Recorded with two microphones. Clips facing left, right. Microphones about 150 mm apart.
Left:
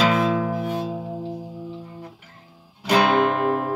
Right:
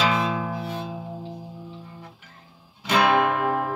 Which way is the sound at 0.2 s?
50° left (ahead or behind).